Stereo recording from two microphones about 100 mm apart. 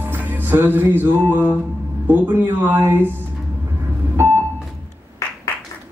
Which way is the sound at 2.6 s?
25° right (ahead or behind).